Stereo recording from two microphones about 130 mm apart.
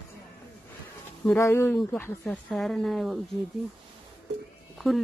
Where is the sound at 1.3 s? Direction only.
20° left (ahead or behind).